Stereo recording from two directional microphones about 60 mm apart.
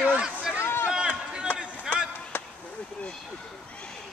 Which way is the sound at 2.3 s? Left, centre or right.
Left.